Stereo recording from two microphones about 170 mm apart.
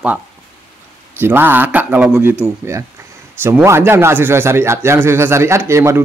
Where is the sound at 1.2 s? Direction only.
10° right (ahead or behind).